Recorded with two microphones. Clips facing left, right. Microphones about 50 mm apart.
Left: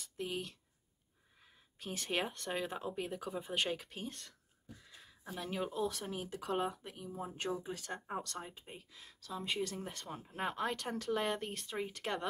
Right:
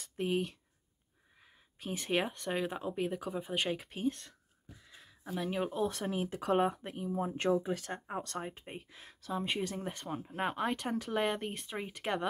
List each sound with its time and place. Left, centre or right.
0.0 s speech: right
1.8 s speech: centre
5.0 s a sound: centre
5.6 s speech: right
5.9 s speech: right
7.9 s speech: right
8.3 s speech: right
9.8 s speech: centre